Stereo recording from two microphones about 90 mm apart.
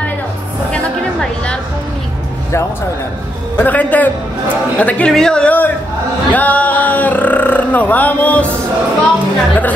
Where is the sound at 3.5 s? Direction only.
20° left (ahead or behind).